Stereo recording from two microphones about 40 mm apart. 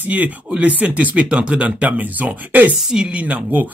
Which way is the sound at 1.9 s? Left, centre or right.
Right.